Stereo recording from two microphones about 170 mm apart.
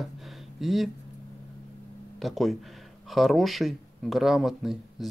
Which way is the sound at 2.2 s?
Centre (ahead or behind).